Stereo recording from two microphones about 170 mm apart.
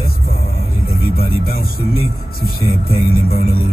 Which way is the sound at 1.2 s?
60° left (ahead or behind).